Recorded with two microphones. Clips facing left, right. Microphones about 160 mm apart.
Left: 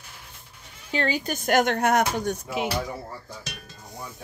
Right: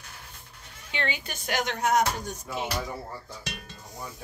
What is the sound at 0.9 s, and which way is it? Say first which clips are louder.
Speech: left 7 dB; 40° left (ahead or behind).